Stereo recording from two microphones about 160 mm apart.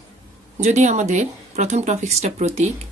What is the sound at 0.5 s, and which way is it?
Speech, 45° right (ahead or behind).